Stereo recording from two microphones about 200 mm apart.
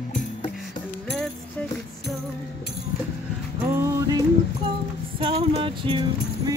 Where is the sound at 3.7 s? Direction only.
15° right (ahead or behind).